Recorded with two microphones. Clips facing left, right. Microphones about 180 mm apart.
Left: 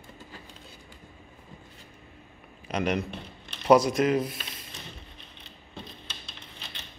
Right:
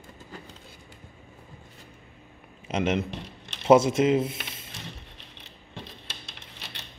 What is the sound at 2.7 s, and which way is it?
A man's voice, 25° right (ahead or behind).